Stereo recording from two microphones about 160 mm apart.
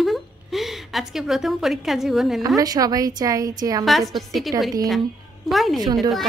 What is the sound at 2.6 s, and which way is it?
Speech, 25° right (ahead or behind).